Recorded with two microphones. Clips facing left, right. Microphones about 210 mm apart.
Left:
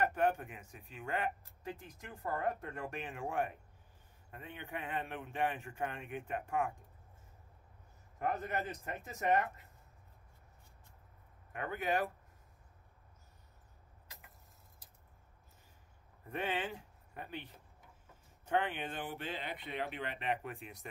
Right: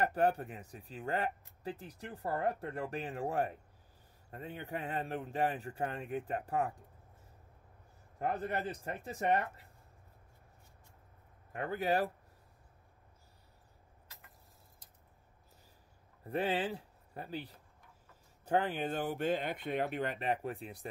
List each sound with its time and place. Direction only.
0.0 s speech: 35° right (ahead or behind)
8.2 s speech: 35° right (ahead or behind)
11.5 s speech: 35° right (ahead or behind)
16.3 s speech: 35° right (ahead or behind)